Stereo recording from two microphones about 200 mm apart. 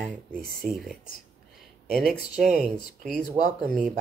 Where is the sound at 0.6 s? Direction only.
Centre (ahead or behind).